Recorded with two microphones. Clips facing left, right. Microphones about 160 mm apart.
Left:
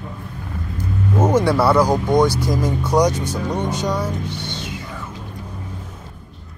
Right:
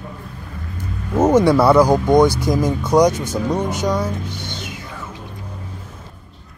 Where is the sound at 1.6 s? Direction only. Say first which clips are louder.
Right 3 dB; 10° right (ahead or behind).